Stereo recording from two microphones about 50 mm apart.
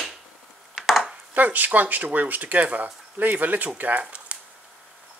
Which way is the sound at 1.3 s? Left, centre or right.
Right.